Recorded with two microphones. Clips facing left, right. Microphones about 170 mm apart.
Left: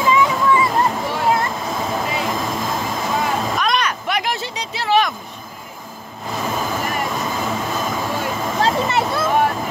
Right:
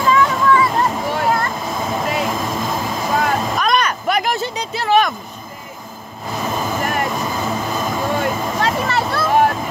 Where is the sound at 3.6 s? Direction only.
45° right (ahead or behind).